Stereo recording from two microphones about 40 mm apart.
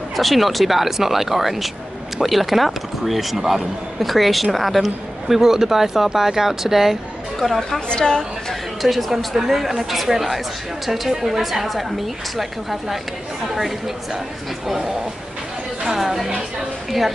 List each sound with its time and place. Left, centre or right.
0.1 s speech: centre
7.3 s speech: centre
7.9 s a woman's voice: left
8.8 s speech: centre
16.0 s speech: centre